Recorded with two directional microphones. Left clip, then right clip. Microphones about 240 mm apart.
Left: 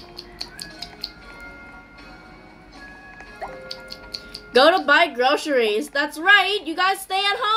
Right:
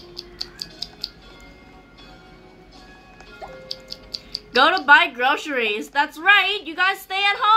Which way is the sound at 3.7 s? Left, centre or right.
Centre.